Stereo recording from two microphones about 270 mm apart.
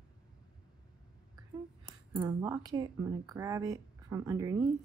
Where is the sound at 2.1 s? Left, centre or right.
Centre.